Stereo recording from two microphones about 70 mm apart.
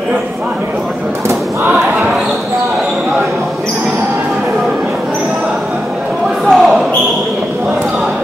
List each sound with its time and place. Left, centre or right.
6.4 s basketball bounce: centre